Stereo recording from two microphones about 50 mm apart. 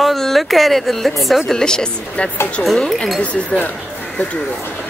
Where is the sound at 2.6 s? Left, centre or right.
Left.